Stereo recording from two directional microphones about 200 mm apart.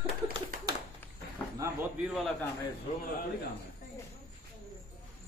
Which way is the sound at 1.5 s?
15° right (ahead or behind).